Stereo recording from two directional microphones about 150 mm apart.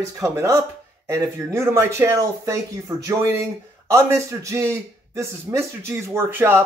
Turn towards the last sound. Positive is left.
turn(degrees=-15)  # may be behind; listen again after turning